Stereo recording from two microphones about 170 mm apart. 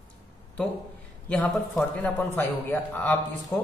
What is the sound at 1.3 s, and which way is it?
A man's voice, 10° left (ahead or behind).